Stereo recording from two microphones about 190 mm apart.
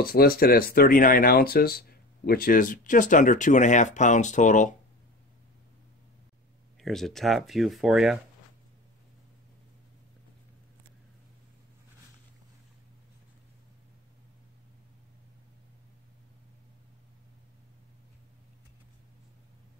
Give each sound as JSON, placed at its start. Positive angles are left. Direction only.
{"t": 0.0, "sound": "speech", "side_deg": 50}
{"t": 6.8, "sound": "speech", "side_deg": 0}